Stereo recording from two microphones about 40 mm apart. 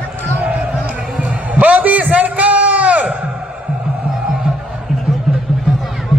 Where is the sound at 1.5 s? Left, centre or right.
Right.